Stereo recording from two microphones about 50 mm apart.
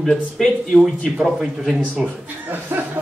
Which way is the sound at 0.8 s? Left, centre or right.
Centre.